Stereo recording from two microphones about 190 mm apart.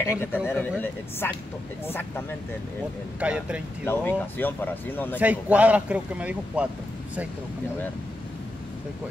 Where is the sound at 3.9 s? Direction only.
10° left (ahead or behind).